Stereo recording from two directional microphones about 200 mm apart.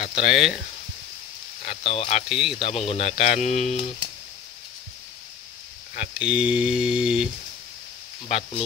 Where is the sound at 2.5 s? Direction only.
30° left (ahead or behind).